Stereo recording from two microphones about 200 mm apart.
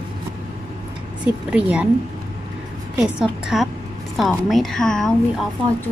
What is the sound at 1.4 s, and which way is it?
Speech, 5° right (ahead or behind).